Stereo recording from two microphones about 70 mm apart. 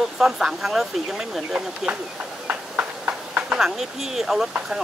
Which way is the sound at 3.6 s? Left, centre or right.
Centre.